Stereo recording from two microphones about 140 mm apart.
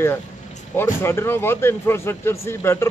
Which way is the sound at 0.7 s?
15° left (ahead or behind).